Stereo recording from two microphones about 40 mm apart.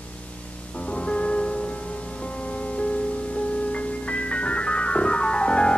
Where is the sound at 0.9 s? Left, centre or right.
Left.